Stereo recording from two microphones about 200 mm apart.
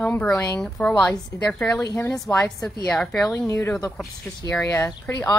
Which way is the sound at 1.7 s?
15° left (ahead or behind).